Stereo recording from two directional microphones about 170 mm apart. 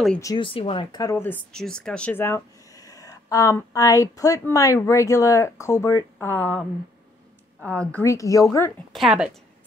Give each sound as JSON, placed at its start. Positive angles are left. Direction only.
{"t": 0.2, "sound": "speech", "side_deg": 25}
{"t": 1.1, "sound": "speech", "side_deg": 10}
{"t": 7.7, "sound": "speech", "side_deg": 5}
{"t": 8.0, "sound": "speech", "side_deg": 20}
{"t": 8.9, "sound": "speech", "side_deg": -5}